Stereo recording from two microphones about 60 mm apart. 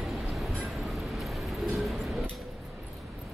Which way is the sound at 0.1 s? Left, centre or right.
Centre.